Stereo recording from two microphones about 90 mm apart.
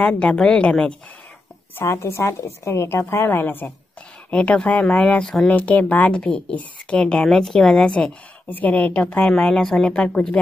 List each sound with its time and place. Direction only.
0.0 s a woman's voice: 15° left (ahead or behind)
1.8 s a woman's voice: 30° left (ahead or behind); by 10.4 s 10° left (ahead or behind)